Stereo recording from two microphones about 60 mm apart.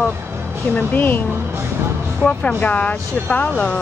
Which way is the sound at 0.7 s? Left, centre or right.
Left.